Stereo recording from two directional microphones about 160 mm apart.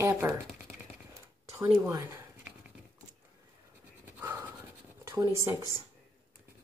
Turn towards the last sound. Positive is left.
turn(degrees=-20)  # may be behind; listen again after turning